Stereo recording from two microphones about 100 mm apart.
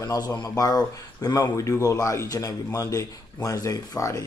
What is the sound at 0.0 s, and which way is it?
Speech, 40° left (ahead or behind).